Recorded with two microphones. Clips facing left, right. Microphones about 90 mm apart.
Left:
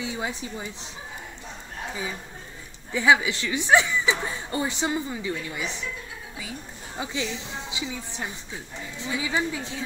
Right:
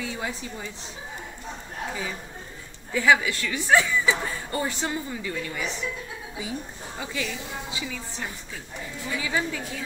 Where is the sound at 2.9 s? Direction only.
20° left (ahead or behind).